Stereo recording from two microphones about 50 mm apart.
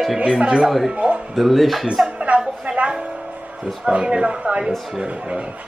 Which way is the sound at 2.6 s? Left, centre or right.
Right.